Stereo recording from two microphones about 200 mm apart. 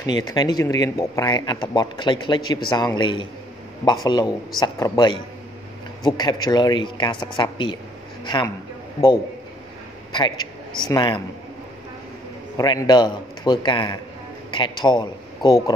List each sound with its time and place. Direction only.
0.0 s a man's voice: 20° left (ahead or behind)
10.9 s speech: 20° left (ahead or behind)
12.5 s speech: 20° left (ahead or behind)